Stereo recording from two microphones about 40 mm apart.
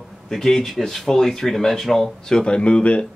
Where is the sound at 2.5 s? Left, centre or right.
Left.